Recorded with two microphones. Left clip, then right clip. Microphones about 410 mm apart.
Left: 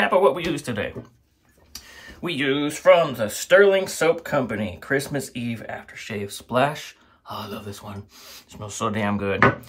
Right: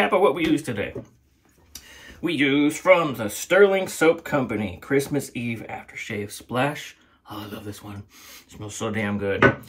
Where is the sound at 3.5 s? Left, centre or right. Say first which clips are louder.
Left 2 dB; left.